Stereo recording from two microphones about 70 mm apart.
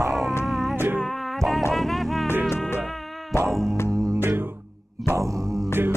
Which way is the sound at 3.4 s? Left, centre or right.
Centre.